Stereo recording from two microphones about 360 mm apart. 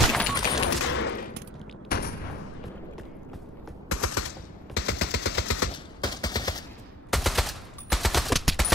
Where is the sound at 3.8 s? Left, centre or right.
Left.